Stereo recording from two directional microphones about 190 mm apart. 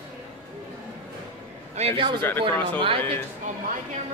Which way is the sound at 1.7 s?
30° right (ahead or behind).